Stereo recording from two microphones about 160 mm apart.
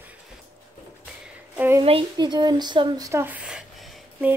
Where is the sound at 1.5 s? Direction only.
10° right (ahead or behind).